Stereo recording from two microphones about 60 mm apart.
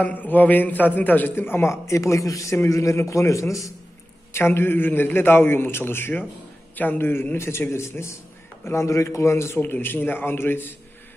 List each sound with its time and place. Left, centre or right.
0.0 s a man's voice: left
1.6 s a man's voice: left
2.5 s a man's voice: left
4.3 s a man's voice: left
9.6 s a man's voice: left